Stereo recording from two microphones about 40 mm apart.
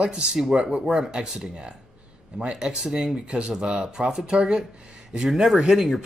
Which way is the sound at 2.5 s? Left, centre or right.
Centre.